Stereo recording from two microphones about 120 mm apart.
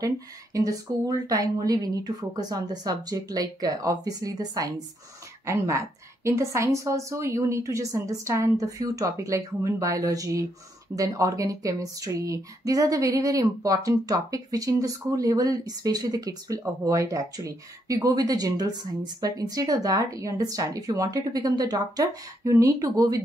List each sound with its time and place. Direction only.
0.0 s speech: 30° right (ahead or behind)